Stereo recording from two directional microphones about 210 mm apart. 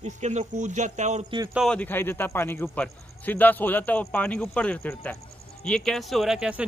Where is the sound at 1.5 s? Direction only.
Centre (ahead or behind).